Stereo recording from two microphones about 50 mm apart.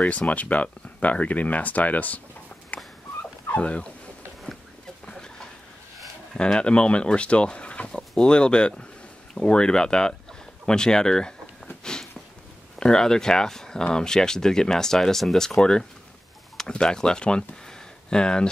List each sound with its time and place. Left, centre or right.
0.0 s speech: centre
0.3 s speech: left
2.7 s dog: left
3.4 s speech: left
5.0 s a sound: centre
6.3 s speech: centre
11.8 s sniff: centre
12.7 s speech: centre